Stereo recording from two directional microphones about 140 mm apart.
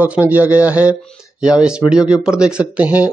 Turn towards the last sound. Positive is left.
turn(degrees=-10)  # may be behind; listen again after turning